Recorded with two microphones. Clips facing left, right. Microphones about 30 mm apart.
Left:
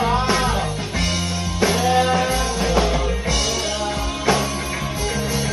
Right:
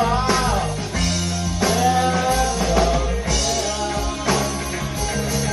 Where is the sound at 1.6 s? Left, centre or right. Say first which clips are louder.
Left 1 dB; left.